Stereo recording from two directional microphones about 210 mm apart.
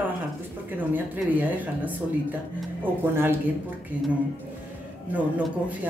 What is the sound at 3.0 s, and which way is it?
Speech, 10° right (ahead or behind).